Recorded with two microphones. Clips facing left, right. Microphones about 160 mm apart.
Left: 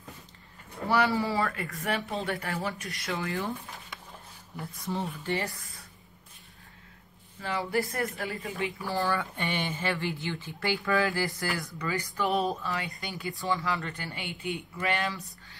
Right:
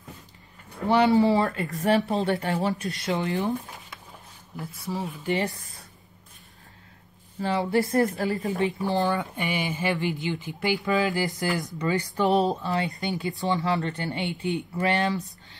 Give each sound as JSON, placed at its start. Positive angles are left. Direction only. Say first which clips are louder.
{"t": 0.8, "sound": "speech", "louder": "right 7 dB", "side_deg": -25}
{"t": 4.6, "sound": "speech", "louder": "right 2 dB", "side_deg": -5}
{"t": 5.3, "sound": "speech", "louder": "right 6 dB", "side_deg": -25}
{"t": 7.3, "sound": "speech", "louder": "right 6 dB", "side_deg": -30}
{"t": 8.1, "sound": "a woman's voice", "louder": "right 8 dB", "side_deg": -40}
{"t": 8.8, "sound": "speech", "louder": "right 1 dB", "side_deg": -20}